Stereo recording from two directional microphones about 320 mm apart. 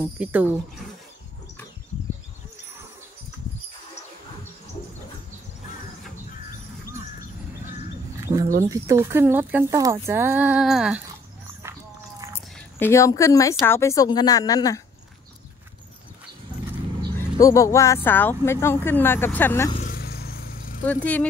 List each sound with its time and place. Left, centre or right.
0.0 s speech: centre
8.6 s speech: centre
11.6 s a sound: centre
12.7 s speech: centre
17.4 s speech: centre
19.8 s vehicle: left
20.8 s speech: centre